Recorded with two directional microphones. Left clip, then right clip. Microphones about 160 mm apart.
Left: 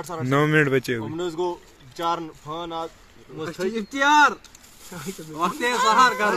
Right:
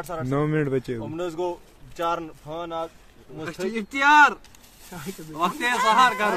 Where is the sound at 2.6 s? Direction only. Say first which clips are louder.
Right 1 dB; 40° right (ahead or behind).